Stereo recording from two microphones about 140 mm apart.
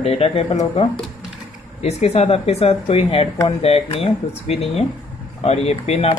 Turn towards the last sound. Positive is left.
turn(degrees=45)  # may be behind; listen again after turning